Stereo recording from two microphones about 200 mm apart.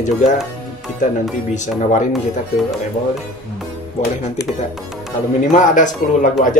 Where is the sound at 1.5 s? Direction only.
35° left (ahead or behind).